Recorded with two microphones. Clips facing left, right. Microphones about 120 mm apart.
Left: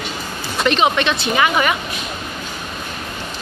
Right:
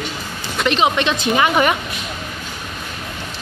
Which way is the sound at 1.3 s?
35° right (ahead or behind).